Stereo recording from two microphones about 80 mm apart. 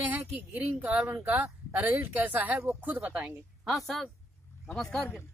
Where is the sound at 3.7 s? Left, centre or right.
Centre.